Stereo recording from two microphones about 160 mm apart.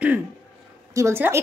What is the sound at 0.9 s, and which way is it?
Speech, 15° right (ahead or behind).